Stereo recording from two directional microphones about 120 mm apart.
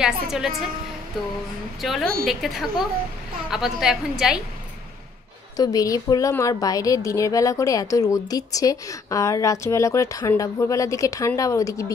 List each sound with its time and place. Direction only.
0.0 s a woman's voice: 5° right (ahead or behind)
1.8 s a woman's voice: centre (ahead or behind)
5.6 s a woman's voice: 30° left (ahead or behind)